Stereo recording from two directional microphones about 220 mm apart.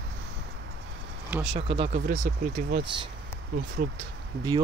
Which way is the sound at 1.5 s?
25° right (ahead or behind).